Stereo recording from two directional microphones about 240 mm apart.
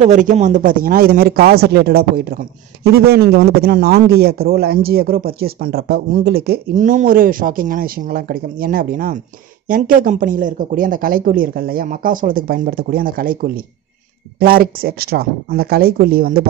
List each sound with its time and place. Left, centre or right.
0.0 s speech: right